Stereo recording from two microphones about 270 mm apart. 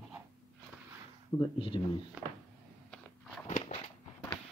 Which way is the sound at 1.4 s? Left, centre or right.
Centre.